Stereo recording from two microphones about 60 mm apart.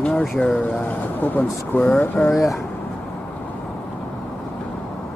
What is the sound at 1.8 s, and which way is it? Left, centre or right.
Speech, centre.